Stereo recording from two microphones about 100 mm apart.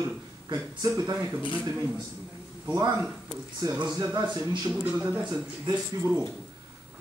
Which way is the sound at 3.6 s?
40° right (ahead or behind).